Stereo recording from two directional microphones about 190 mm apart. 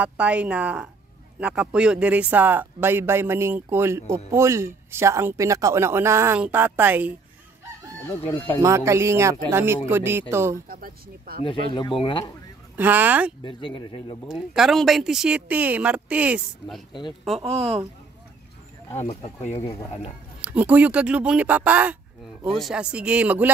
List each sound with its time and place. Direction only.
0.0 s speech: 5° right (ahead or behind)
8.5 s speech: 15° right (ahead or behind)
10.7 s speech: 50° right (ahead or behind)
11.4 s speech: 25° left (ahead or behind)
12.7 s speech: 10° right (ahead or behind)
13.5 s speech: 25° left (ahead or behind)
14.2 s speech: centre (ahead or behind)
17.4 s speech: 30° right (ahead or behind)
18.9 s speech: 35° left (ahead or behind)
20.4 s speech: 10° right (ahead or behind)